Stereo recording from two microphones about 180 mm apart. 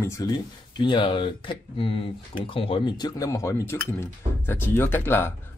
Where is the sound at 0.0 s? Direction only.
15° left (ahead or behind).